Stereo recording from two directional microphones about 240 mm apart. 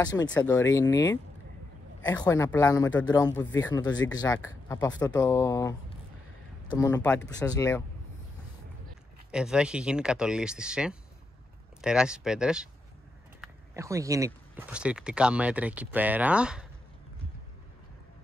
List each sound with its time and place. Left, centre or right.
0.0 s a man's voice: centre
9.3 s speech: centre
13.7 s speech: centre